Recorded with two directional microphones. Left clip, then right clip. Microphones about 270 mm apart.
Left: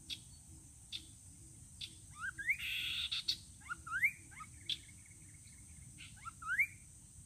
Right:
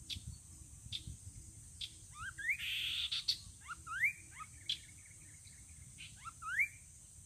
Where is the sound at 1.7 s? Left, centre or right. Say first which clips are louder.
Right 2 dB; centre.